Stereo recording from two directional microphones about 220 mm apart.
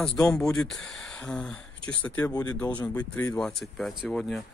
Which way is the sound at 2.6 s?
20° left (ahead or behind).